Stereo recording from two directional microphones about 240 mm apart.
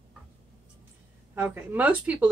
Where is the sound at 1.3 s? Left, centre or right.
Centre.